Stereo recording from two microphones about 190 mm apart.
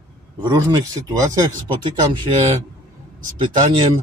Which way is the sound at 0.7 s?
20° right (ahead or behind).